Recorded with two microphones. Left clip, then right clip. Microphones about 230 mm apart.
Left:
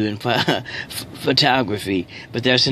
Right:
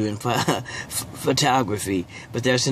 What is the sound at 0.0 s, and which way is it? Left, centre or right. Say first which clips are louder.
Speech: left 3 dB; centre.